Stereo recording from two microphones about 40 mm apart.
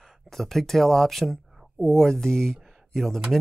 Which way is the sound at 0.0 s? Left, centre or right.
Centre.